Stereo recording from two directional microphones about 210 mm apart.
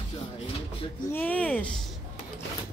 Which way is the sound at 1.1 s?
5° left (ahead or behind).